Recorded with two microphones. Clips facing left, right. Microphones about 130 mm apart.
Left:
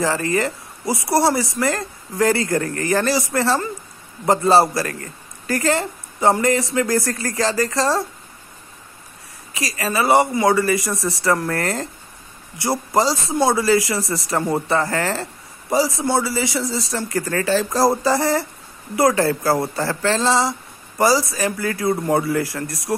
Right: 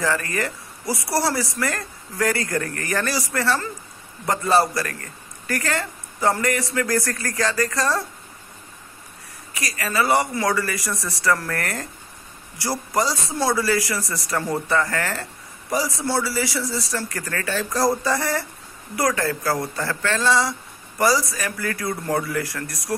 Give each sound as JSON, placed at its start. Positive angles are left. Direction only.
{"t": 0.0, "sound": "speech", "side_deg": 25}
{"t": 9.5, "sound": "speech", "side_deg": 25}